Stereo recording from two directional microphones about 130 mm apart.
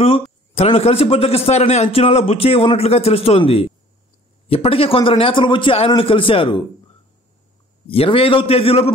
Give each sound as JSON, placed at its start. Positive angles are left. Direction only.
{"t": 0.6, "sound": "a man's voice", "side_deg": 50}
{"t": 7.9, "sound": "a man's voice", "side_deg": 45}